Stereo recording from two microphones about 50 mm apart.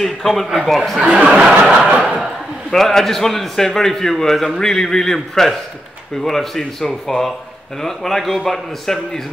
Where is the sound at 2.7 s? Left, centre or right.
Centre.